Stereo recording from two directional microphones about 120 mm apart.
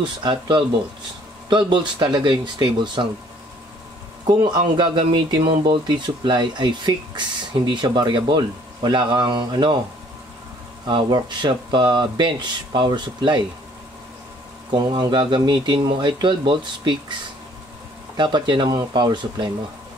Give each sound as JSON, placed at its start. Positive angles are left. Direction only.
{"t": 0.2, "sound": "speech", "side_deg": -40}
{"t": 4.4, "sound": "speech", "side_deg": -40}
{"t": 10.9, "sound": "speech", "side_deg": -40}
{"t": 14.8, "sound": "speech", "side_deg": -40}
{"t": 18.1, "sound": "speech", "side_deg": -40}